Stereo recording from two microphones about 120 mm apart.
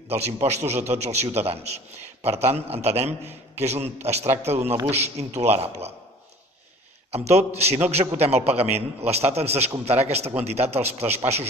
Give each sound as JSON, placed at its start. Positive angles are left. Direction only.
{"t": 0.1, "sound": "a man's voice", "side_deg": -60}
{"t": 7.1, "sound": "a man's voice", "side_deg": -60}